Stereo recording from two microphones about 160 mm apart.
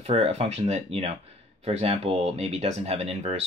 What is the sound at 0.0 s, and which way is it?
Speech, 40° right (ahead or behind).